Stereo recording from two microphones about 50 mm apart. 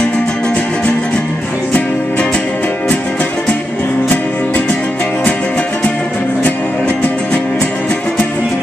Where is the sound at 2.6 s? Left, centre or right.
Left.